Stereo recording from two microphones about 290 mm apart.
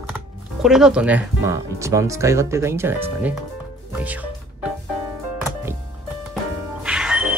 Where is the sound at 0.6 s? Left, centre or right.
Centre.